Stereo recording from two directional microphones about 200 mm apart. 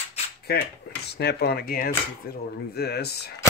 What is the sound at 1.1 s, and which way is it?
Speech, 55° left (ahead or behind).